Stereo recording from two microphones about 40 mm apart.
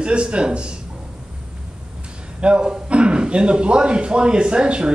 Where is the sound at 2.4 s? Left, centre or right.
Right.